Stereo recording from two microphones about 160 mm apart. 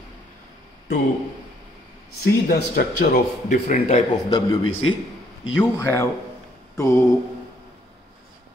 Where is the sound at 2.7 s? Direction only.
90° left.